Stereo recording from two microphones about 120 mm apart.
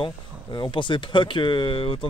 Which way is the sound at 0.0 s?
40° left (ahead or behind).